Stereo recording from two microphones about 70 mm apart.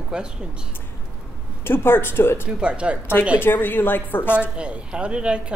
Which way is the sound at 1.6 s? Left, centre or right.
Left.